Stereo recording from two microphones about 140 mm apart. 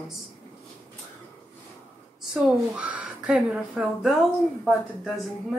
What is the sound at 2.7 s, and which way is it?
A child's voice, 10° right (ahead or behind).